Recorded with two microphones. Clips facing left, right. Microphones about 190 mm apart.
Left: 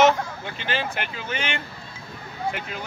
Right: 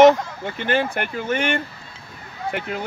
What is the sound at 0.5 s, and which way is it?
Speech, 55° right (ahead or behind).